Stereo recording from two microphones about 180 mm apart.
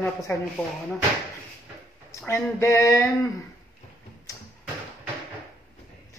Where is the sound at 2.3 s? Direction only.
15° left (ahead or behind).